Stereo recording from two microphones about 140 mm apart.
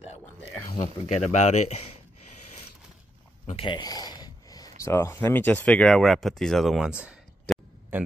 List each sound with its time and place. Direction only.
0.7 s speech: 55° left (ahead or behind)
3.5 s a sound: 35° left (ahead or behind)
4.9 s speech: 20° left (ahead or behind); by 8.0 s 10° right (ahead or behind)